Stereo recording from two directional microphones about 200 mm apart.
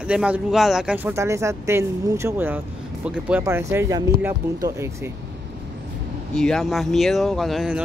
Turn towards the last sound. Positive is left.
turn(degrees=0)  # may be behind; listen again after turning